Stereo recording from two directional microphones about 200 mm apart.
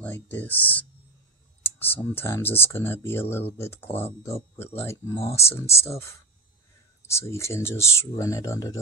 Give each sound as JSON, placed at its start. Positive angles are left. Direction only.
{"t": 0.0, "sound": "speech", "side_deg": 10}
{"t": 5.2, "sound": "speech", "side_deg": 30}
{"t": 5.5, "sound": "speech", "side_deg": 15}